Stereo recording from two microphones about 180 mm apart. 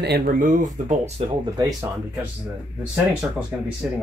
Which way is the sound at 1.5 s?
15° right (ahead or behind).